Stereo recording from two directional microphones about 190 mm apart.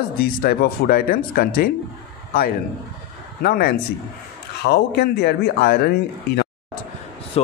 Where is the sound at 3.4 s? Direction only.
55° left (ahead or behind).